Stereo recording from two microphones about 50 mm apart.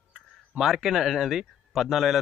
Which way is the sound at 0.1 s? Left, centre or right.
Centre.